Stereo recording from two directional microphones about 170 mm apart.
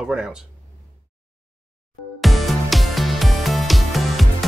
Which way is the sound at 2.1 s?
Centre (ahead or behind).